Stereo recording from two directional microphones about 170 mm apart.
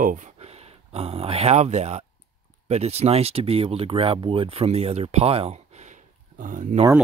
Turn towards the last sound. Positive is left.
turn(degrees=-50)  # may be behind; listen again after turning